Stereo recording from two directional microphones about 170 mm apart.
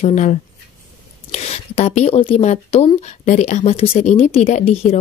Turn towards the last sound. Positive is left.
turn(degrees=40)  # may be behind; listen again after turning